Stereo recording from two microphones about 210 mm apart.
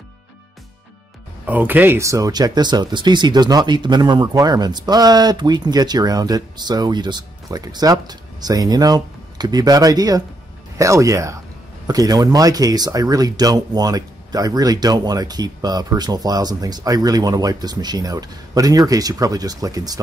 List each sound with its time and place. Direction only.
1.4 s speech: 10° right (ahead or behind)